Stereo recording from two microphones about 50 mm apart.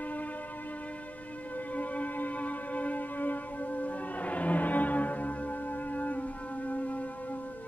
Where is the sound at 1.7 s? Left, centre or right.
Left.